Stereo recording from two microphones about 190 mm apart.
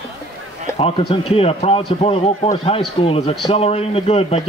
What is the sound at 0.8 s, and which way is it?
A man's voice, 30° left (ahead or behind).